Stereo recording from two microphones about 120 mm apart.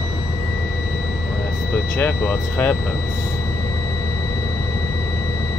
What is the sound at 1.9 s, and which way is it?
Speech, 15° left (ahead or behind).